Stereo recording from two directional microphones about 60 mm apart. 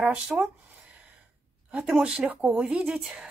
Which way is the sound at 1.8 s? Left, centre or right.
Centre.